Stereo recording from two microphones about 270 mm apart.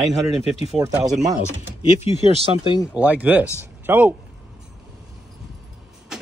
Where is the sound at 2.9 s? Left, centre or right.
Centre.